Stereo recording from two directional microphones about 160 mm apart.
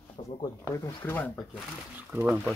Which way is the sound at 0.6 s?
20° left (ahead or behind).